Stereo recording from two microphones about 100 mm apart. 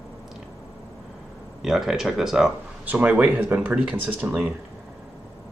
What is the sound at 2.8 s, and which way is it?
Speech, 15° right (ahead or behind).